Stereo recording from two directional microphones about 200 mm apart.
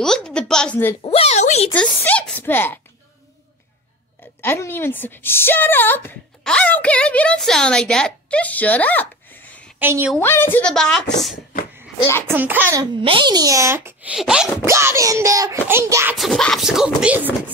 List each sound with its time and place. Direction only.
0.0 s a woman's voice: 5° left (ahead or behind)
1.0 s a sound: 30° left (ahead or behind)
1.7 s speech: 5° left (ahead or behind)
4.4 s a woman's voice: 10° left (ahead or behind)
9.8 s a woman's voice: 10° right (ahead or behind)
10.1 s a woman's voice: 10° left (ahead or behind)
12.3 s a child's voice: 10° right (ahead or behind)
13.0 s a child's voice: 25° right (ahead or behind)
16.2 s a woman's voice: centre (ahead or behind)